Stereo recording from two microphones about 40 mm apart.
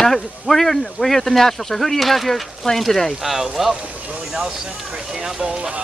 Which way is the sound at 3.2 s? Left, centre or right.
Centre.